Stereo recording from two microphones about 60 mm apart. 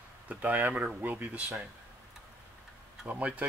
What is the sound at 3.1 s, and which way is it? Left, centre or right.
Speech, right.